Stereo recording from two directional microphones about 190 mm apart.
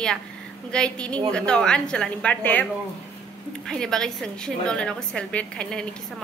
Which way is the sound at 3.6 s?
5° left (ahead or behind).